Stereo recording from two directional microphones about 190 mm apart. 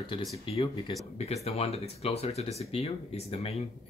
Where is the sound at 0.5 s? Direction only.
30° left (ahead or behind).